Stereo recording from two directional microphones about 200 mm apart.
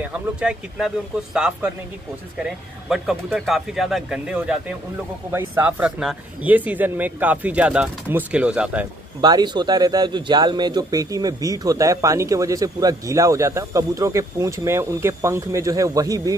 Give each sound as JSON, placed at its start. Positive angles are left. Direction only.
{"t": 0.0, "sound": "a man's voice", "side_deg": -5}
{"t": 9.2, "sound": "a man's voice", "side_deg": -20}